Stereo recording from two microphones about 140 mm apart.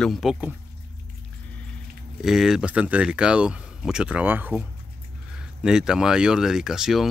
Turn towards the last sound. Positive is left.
turn(degrees=-5)  # may be behind; listen again after turning